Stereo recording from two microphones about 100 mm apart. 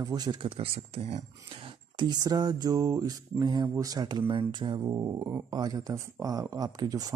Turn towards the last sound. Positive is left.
turn(degrees=-40)  # may be behind; listen again after turning